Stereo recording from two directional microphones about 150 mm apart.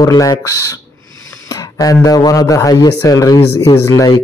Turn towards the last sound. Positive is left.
turn(degrees=25)  # may be behind; listen again after turning